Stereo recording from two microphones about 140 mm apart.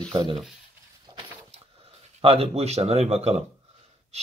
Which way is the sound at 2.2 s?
45° right (ahead or behind).